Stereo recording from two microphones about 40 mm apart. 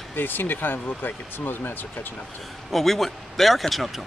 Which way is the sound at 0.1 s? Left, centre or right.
Left.